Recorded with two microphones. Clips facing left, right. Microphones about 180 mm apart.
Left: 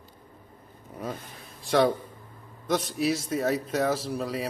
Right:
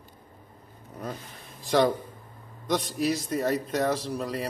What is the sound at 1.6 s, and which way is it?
A man's voice, centre (ahead or behind).